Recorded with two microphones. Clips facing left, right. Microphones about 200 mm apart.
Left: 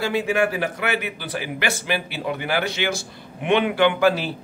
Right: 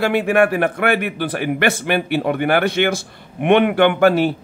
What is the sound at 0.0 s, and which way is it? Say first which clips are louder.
A man's voice: right 6 dB; 60° right (ahead or behind).